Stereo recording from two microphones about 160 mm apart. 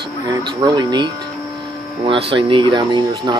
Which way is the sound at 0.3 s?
25° right (ahead or behind).